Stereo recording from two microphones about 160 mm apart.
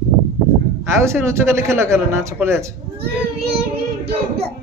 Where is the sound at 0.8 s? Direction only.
15° right (ahead or behind).